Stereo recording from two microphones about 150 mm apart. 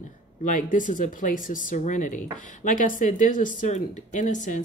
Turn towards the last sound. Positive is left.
turn(degrees=55)  # may be behind; listen again after turning